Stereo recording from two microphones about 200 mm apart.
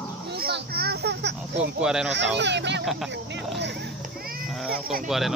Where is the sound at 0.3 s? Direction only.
55° right (ahead or behind).